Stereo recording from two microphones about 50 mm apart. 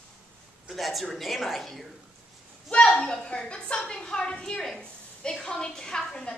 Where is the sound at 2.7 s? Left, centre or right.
Centre.